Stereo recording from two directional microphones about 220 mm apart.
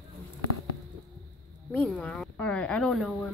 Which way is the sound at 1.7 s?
5° left (ahead or behind).